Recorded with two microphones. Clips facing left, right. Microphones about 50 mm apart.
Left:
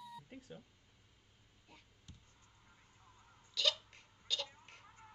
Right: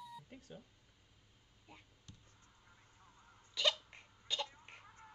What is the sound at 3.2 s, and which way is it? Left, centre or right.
Hiccup, right.